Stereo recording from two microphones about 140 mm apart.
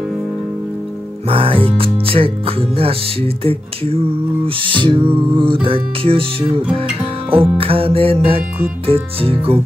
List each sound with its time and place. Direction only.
1.3 s music: 40° right (ahead or behind)